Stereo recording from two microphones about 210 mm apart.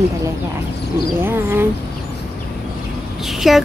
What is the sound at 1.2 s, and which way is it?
Speech, 10° right (ahead or behind).